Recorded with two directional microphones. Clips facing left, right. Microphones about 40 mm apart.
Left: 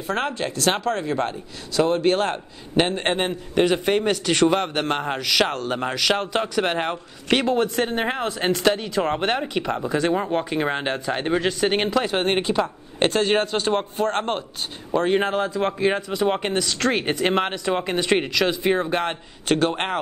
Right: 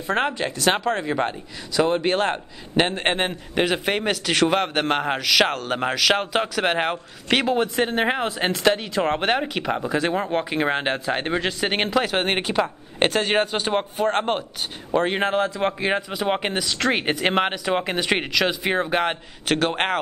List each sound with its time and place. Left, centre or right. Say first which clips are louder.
0.0 s speech: right 2 dB; centre
12.0 s speech: left 1 dB; right